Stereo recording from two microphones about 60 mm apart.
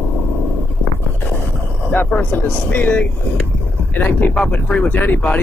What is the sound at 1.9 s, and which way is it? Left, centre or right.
Speech, left.